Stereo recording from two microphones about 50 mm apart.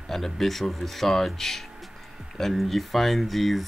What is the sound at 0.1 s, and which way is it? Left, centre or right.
Speech, centre.